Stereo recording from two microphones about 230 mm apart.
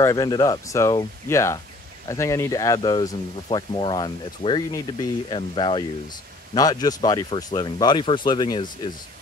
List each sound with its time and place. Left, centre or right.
0.0 s speech: centre